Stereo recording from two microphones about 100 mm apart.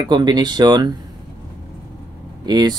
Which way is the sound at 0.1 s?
45° right (ahead or behind).